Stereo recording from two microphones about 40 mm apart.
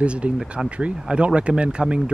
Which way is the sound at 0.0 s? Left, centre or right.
Right.